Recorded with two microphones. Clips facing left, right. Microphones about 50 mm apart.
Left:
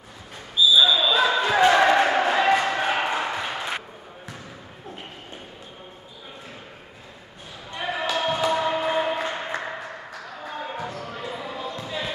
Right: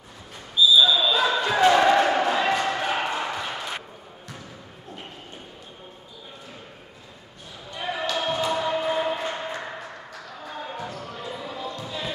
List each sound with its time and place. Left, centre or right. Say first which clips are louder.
0.7 s basketball bounce: left 3 dB; centre
7.8 s choir: left 2 dB; centre